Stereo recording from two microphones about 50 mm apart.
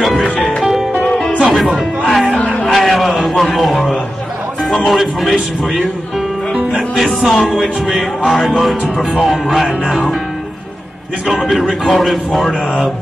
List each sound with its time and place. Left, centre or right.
0.0 s music: centre
1.0 s music: centre
1.4 s speech: centre
2.3 s a sound: centre
2.6 s a sound: centre
4.6 s speech: centre
11.2 s speech: centre